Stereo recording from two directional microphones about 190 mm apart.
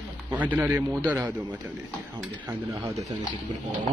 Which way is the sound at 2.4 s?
15° right (ahead or behind).